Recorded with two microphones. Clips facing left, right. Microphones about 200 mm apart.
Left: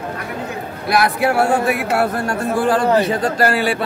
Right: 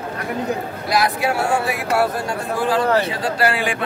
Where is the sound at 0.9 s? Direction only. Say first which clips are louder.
Left 3 dB; 60° left (ahead or behind).